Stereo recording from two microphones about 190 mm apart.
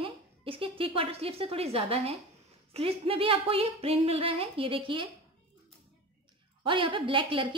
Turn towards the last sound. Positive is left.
turn(degrees=-25)  # may be behind; listen again after turning